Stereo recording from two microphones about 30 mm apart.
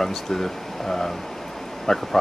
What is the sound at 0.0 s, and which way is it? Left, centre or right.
Speech, centre.